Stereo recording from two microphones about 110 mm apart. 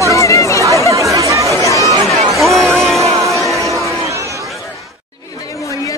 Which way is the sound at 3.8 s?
30° right (ahead or behind).